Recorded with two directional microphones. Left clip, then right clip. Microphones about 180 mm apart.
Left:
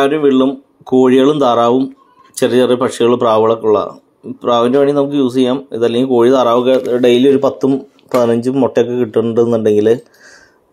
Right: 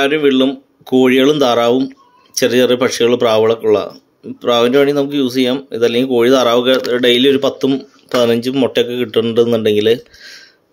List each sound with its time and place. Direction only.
0.0 s speech: 5° right (ahead or behind)
7.5 s speech: 20° right (ahead or behind); by 10.0 s 5° right (ahead or behind)